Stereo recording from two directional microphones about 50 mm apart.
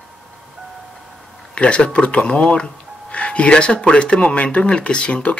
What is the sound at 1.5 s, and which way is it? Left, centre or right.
Speech, left.